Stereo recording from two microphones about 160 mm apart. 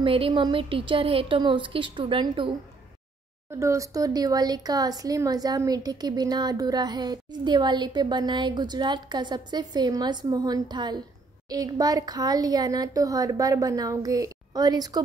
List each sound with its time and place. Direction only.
0.0 s a woman's voice: 35° right (ahead or behind)
3.5 s speech: 20° right (ahead or behind)